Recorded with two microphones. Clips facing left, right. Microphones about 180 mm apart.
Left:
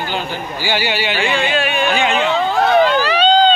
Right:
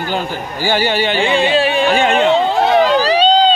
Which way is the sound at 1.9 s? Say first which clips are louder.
Right 3 dB; 55° right (ahead or behind).